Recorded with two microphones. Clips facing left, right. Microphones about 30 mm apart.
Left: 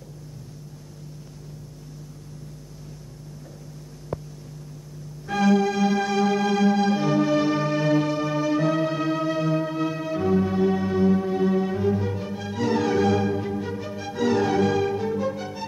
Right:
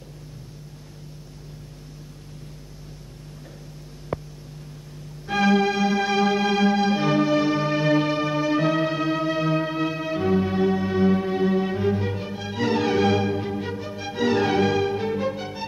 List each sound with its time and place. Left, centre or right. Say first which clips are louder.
4.1 s a sound: right 2 dB; right
5.2 s music: right 1 dB; right
7.2 s music: right 1 dB; centre
11.0 s music: even; right
13.7 s music: even; centre
14.0 s music: right 1 dB; right